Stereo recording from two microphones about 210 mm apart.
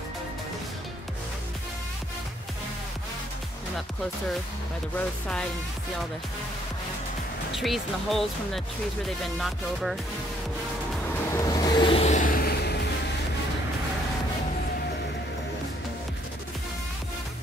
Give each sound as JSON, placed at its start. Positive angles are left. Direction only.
{"t": 4.9, "sound": "speech", "side_deg": 5}
{"t": 7.5, "sound": "speech", "side_deg": 0}
{"t": 11.3, "sound": "vehicle", "side_deg": 20}